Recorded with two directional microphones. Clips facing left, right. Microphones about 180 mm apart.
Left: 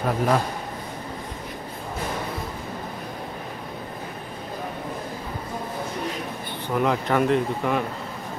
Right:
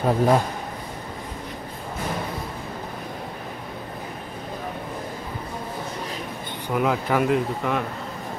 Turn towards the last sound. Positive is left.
turn(degrees=0)  # may be behind; listen again after turning